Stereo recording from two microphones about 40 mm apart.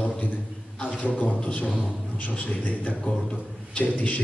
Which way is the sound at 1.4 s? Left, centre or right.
Left.